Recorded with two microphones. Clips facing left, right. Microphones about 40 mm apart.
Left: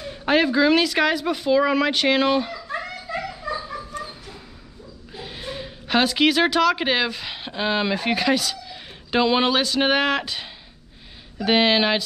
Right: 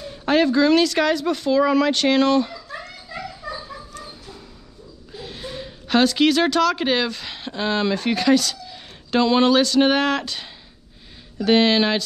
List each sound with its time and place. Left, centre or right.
0.0 s speech: centre
2.5 s a sound: left
5.1 s a woman's voice: centre